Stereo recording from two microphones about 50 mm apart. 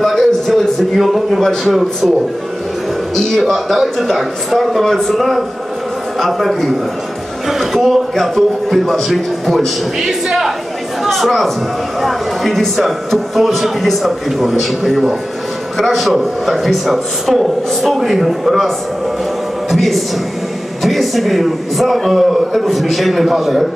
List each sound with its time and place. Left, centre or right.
0.0 s a sound: centre
1.5 s speech: centre
3.2 s speech: centre
19.7 s speech: centre